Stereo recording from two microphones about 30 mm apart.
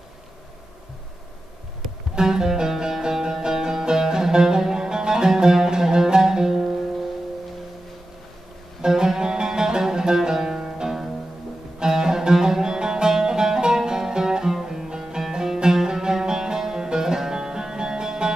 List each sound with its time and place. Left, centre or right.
2.1 s music: centre
8.8 s music: right
11.8 s music: right